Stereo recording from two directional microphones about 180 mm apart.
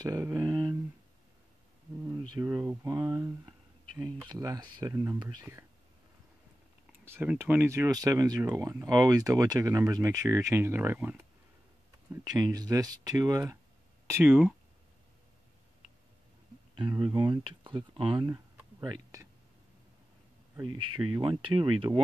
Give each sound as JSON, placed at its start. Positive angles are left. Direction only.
{"t": 0.0, "sound": "speech", "side_deg": -20}
{"t": 2.3, "sound": "speech", "side_deg": -10}
{"t": 7.1, "sound": "speech", "side_deg": -10}
{"t": 14.2, "sound": "speech", "side_deg": -5}
{"t": 16.7, "sound": "speech", "side_deg": -25}
{"t": 20.6, "sound": "speech", "side_deg": -25}